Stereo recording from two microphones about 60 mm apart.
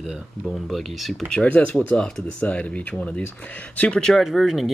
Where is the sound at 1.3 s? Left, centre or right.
Left.